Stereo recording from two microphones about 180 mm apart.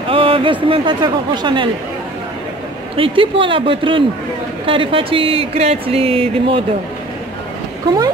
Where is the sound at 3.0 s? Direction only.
30° right (ahead or behind).